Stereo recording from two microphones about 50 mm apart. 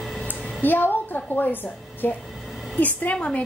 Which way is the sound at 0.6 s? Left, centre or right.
Left.